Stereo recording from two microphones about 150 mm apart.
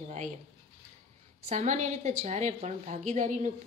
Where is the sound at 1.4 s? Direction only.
55° right (ahead or behind).